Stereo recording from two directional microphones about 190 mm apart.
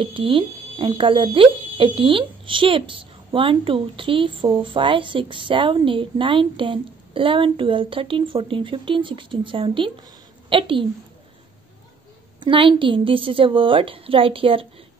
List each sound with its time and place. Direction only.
0.0 s a woman's voice: 30° right (ahead or behind)
12.4 s a woman's voice: 25° right (ahead or behind)